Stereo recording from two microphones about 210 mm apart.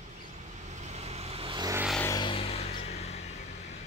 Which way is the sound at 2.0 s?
15° left (ahead or behind).